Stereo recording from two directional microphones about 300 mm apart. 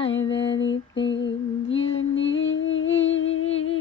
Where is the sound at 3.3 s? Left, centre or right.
Centre.